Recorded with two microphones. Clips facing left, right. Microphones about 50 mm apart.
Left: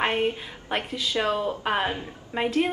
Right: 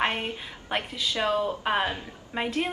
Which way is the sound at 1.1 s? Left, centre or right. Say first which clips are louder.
Left 1 dB; left.